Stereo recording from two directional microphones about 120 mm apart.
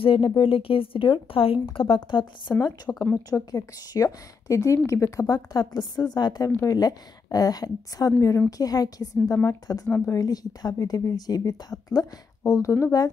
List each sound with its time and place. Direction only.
0.0 s speech: 50° left (ahead or behind)
2.9 s speech: 15° left (ahead or behind)
3.3 s a woman's voice: 30° left (ahead or behind)
5.3 s speech: 35° left (ahead or behind)